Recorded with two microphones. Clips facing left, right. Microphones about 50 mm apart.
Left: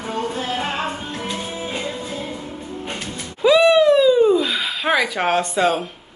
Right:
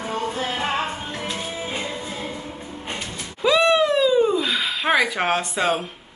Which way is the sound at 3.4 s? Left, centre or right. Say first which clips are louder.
Left 4 dB; centre.